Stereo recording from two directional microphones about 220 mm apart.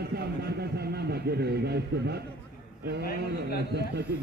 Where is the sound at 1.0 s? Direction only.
50° right (ahead or behind).